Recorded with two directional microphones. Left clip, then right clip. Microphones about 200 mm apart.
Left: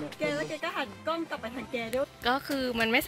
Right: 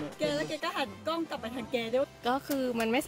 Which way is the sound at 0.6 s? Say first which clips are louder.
Even; 45° right (ahead or behind).